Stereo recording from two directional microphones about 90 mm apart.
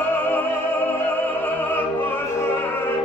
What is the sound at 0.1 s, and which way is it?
Opera, 20° left (ahead or behind).